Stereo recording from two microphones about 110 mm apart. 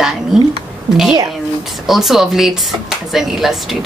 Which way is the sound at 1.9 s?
5° right (ahead or behind).